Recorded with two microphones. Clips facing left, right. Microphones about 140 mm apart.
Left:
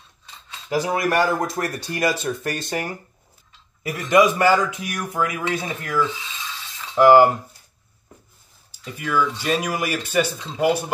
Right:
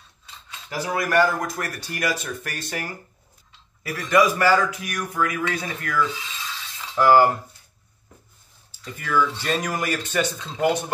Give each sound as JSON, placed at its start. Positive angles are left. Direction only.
{"t": 0.8, "sound": "speech", "side_deg": 25}
{"t": 8.8, "sound": "speech", "side_deg": 10}